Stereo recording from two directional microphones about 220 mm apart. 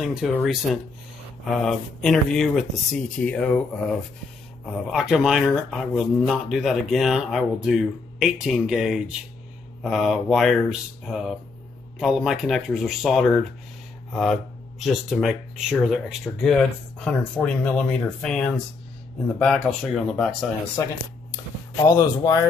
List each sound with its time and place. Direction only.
0.0 s speech: centre (ahead or behind)
4.9 s speech: centre (ahead or behind)
21.7 s speech: 15° left (ahead or behind)